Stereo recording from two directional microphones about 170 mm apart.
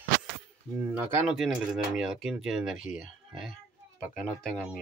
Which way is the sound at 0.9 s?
10° right (ahead or behind).